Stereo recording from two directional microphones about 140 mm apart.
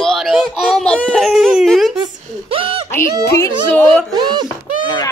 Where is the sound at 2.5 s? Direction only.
40° right (ahead or behind).